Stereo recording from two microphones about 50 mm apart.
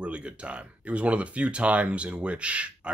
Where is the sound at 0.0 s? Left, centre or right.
Right.